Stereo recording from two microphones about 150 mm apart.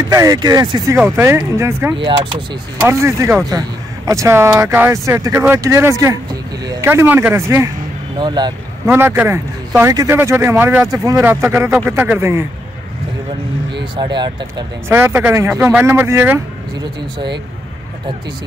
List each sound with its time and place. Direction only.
0.1 s speech: 25° right (ahead or behind)
8.2 s speech: 30° right (ahead or behind)
8.8 s speech: 15° right (ahead or behind)
13.9 s speech: 30° right (ahead or behind)
14.9 s speech: 15° right (ahead or behind)